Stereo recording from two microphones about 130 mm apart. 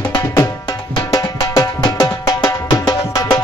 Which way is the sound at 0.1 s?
30° left (ahead or behind).